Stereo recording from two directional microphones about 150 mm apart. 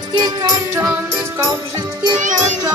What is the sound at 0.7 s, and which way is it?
Music, 15° right (ahead or behind).